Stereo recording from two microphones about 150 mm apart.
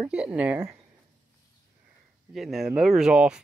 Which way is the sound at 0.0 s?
10° right (ahead or behind).